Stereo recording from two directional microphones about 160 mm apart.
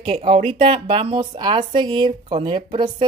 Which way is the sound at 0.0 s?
35° right (ahead or behind).